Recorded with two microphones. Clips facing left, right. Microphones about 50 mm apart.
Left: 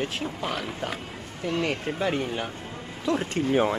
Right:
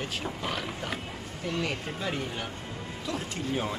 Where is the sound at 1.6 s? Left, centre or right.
Centre.